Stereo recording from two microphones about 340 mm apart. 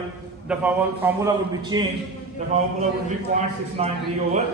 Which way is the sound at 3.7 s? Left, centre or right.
Centre.